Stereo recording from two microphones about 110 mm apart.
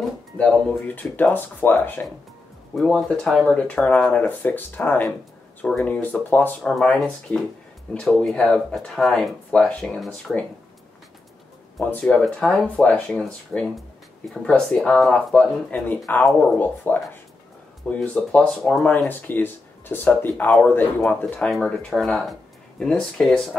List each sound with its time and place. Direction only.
0.4 s speech: 10° left (ahead or behind)
2.7 s speech: 5° left (ahead or behind)
9.5 s speech: 10° left (ahead or behind)
11.8 s speech: 15° left (ahead or behind)
18.9 s speech: 20° left (ahead or behind)